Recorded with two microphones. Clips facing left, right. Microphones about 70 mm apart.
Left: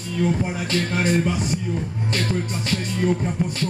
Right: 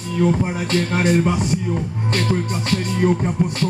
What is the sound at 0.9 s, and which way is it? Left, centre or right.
Music, right.